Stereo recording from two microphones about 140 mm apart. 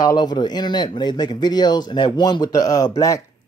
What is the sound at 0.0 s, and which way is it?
Speech, 30° left (ahead or behind).